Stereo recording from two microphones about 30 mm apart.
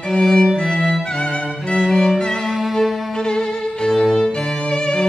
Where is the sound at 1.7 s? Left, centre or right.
Centre.